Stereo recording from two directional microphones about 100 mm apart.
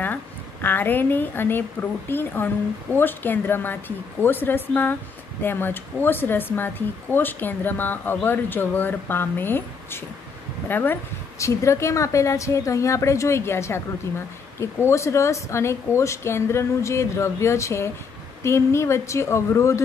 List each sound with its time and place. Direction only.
0.0 s a woman's voice: 20° left (ahead or behind)
10.7 s speech: 20° left (ahead or behind)